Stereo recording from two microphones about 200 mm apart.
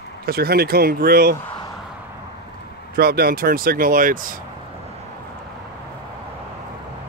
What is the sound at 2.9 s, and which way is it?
Speech, 50° right (ahead or behind).